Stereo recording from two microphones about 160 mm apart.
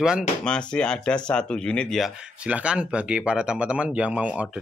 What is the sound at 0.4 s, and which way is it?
Speech, 5° left (ahead or behind).